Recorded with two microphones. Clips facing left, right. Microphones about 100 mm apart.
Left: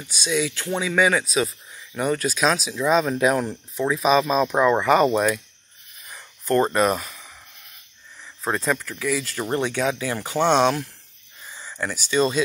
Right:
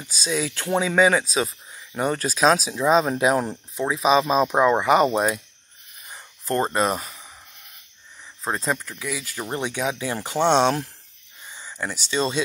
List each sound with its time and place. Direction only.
0.0 s speech: 35° right (ahead or behind)
6.0 s a sound: 30° right (ahead or behind)
8.4 s speech: 25° right (ahead or behind)
11.5 s speech: 15° right (ahead or behind)